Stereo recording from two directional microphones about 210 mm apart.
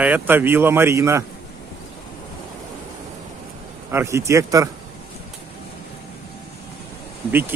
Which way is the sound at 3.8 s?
10° right (ahead or behind).